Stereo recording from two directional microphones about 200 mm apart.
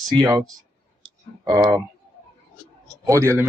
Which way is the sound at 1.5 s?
20° right (ahead or behind).